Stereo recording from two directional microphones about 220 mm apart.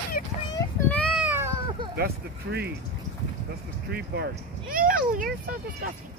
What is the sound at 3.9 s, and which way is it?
Speech, 45° right (ahead or behind).